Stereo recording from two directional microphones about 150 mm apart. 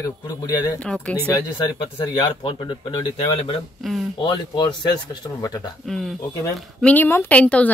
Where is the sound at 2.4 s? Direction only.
30° left (ahead or behind).